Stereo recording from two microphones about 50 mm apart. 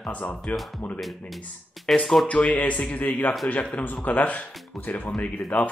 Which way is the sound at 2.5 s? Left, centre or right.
Left.